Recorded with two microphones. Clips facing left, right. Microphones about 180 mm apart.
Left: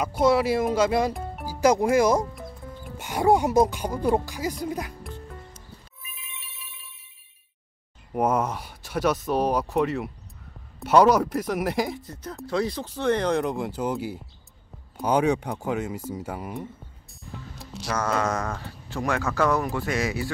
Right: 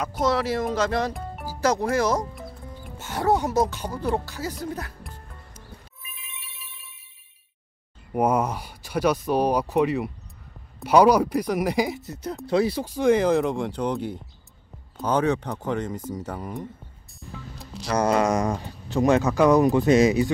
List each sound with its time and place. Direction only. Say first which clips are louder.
0.2 s speech: left 3 dB; 10° left (ahead or behind)
8.1 s speech: right 2 dB; centre (ahead or behind)
17.2 s music: right 1 dB; centre (ahead or behind)
17.8 s speech: right 5 dB; 15° right (ahead or behind)